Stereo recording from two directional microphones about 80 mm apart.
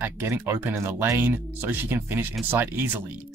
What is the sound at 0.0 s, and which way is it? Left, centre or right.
Speech, right.